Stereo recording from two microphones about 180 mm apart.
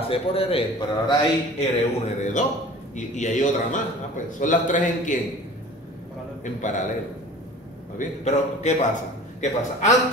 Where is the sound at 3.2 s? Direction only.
45° left (ahead or behind).